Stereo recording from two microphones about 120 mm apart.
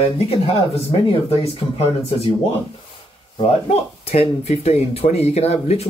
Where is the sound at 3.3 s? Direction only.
55° left (ahead or behind).